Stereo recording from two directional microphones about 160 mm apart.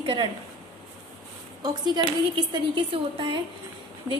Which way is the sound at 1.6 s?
30° right (ahead or behind).